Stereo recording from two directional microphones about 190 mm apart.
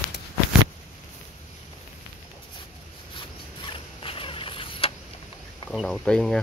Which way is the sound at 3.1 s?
25° left (ahead or behind).